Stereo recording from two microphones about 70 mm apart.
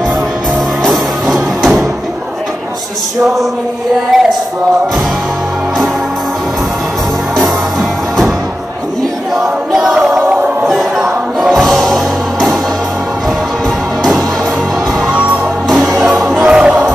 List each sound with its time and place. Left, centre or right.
0.8 s music: centre
4.1 s a sound: centre
9.3 s a sound: centre
10.7 s music: centre
15.0 s music: right
16.3 s music: centre